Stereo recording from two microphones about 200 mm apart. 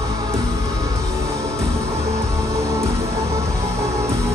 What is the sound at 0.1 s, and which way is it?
Music, 15° right (ahead or behind).